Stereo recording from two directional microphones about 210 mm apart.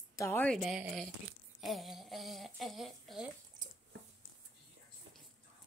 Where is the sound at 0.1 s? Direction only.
10° left (ahead or behind).